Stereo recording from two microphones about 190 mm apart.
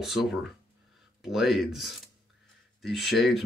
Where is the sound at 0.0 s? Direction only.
Centre (ahead or behind).